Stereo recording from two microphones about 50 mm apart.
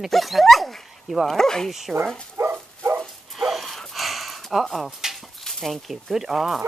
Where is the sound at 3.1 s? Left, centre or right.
Centre.